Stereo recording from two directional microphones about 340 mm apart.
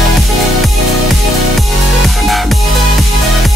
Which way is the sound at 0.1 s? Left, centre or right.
Centre.